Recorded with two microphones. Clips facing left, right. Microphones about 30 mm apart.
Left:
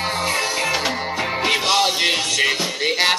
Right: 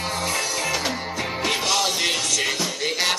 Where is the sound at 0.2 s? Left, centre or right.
Left.